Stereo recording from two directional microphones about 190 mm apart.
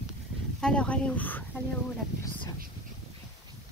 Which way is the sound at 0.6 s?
5° left (ahead or behind).